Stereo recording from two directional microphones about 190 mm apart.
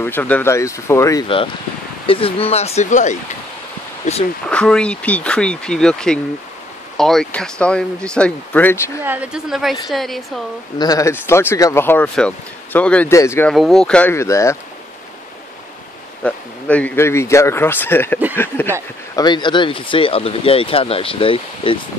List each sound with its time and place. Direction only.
0.0 s speech: 10° left (ahead or behind)
2.0 s speech: 30° left (ahead or behind)
4.5 s speech: 5° left (ahead or behind)
9.0 s speech: 10° right (ahead or behind)
10.8 s speech: 20° left (ahead or behind)
13.5 s speech: centre (ahead or behind)
16.2 s speech: 5° left (ahead or behind)
19.1 s speech: 25° left (ahead or behind)